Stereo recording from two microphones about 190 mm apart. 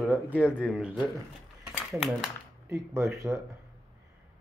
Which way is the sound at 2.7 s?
15° right (ahead or behind).